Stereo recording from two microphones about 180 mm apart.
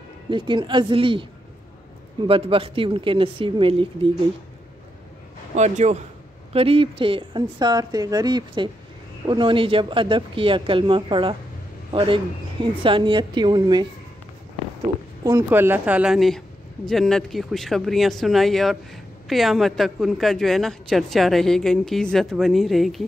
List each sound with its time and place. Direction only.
0.3 s speech: 25° right (ahead or behind)
2.2 s speech: 30° right (ahead or behind)
5.6 s a man's voice: 40° right (ahead or behind); by 13.8 s 25° right (ahead or behind)
15.2 s a woman's voice: 15° right (ahead or behind); by 23.0 s centre (ahead or behind)